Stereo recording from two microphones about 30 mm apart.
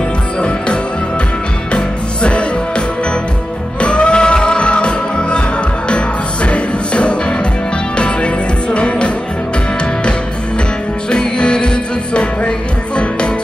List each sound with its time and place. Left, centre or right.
3.8 s music: left
11.1 s music: left